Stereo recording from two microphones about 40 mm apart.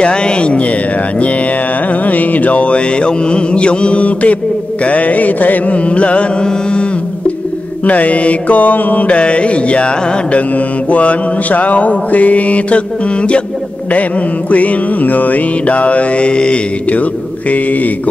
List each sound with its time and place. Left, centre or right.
0.0 s music: left
1.9 s mantra: left
5.8 s mantra: left
7.8 s mantra: left
9.0 s music: left
10.5 s mantra: left
14.5 s mantra: left
16.9 s mantra: left